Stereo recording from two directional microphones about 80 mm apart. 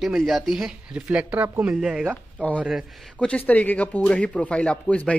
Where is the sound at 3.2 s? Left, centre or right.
Centre.